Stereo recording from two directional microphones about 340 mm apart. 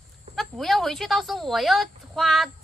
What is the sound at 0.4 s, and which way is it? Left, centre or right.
Speech, centre.